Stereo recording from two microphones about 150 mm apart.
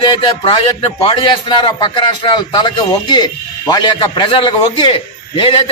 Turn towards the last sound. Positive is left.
turn(degrees=40)  # may be behind; listen again after turning